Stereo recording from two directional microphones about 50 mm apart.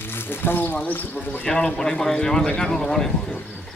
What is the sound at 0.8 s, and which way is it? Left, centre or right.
Speech, left.